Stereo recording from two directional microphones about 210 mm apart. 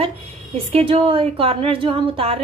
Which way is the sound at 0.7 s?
25° right (ahead or behind).